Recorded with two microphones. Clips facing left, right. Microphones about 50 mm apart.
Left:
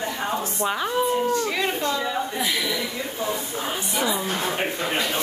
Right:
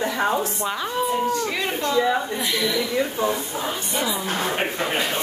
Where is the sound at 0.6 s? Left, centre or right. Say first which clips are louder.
Left 6 dB; centre.